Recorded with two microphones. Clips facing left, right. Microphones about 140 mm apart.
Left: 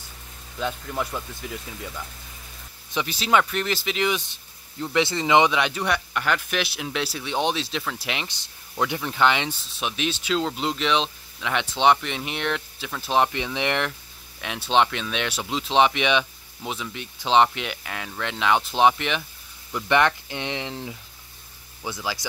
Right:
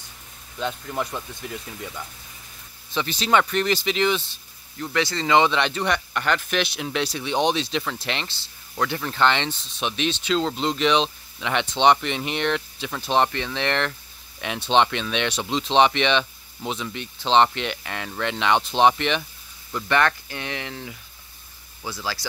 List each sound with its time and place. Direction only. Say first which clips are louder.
0.6 s speech: even; centre (ahead or behind)
2.9 s speech: right 1 dB; 10° left (ahead or behind)
13.3 s speech: even; 15° left (ahead or behind)
14.4 s speech: right 1 dB; centre (ahead or behind)
19.7 s speech: left 1 dB; 15° left (ahead or behind)